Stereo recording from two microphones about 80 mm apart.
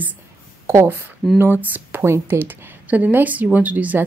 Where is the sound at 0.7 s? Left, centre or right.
Right.